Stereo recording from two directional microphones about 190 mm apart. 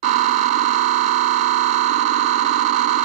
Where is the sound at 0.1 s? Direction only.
40° right (ahead or behind).